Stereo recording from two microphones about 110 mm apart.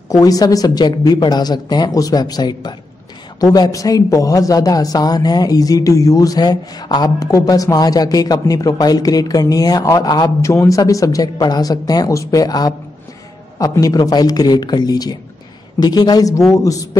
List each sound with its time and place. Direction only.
0.1 s speech: 35° left (ahead or behind)
10.4 s speech: 25° left (ahead or behind)